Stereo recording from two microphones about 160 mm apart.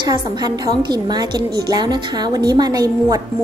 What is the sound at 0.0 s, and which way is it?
A woman's voice, 25° right (ahead or behind).